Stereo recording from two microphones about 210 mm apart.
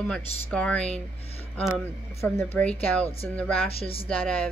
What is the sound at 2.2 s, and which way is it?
Speech, 5° left (ahead or behind).